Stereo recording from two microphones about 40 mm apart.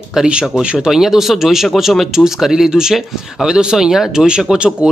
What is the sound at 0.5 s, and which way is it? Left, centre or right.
Speech, right.